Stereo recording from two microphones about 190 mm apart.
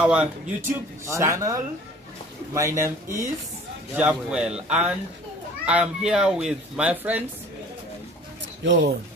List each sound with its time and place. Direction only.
0.0 s speech: 5° right (ahead or behind)
3.9 s speech: 5° right (ahead or behind)
8.6 s speech: 65° right (ahead or behind)